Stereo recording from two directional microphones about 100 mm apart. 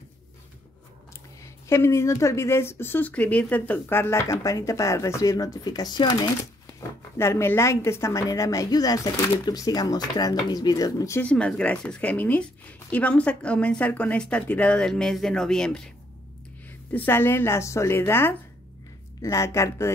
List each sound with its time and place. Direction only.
1.4 s a woman's voice: 25° left (ahead or behind); by 6.3 s 45° left (ahead or behind)
6.8 s a woman's voice: 25° left (ahead or behind)
11.2 s a woman's voice: 10° left (ahead or behind)
16.9 s a woman's voice: 20° left (ahead or behind)